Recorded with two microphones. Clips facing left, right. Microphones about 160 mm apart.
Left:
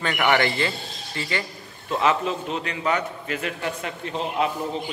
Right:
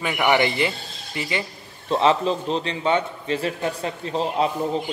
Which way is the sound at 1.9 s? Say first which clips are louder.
Right 3 dB; 30° right (ahead or behind).